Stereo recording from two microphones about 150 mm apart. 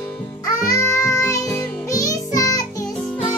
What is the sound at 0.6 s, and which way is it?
Music, 20° left (ahead or behind).